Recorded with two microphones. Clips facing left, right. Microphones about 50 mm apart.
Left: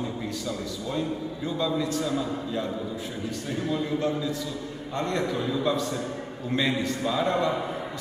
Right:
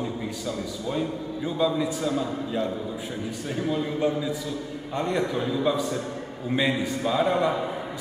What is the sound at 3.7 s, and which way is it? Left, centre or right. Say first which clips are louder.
A man's voice: right 2 dB; centre.